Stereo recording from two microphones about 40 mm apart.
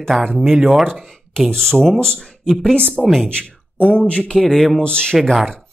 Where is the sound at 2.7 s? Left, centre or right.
Left.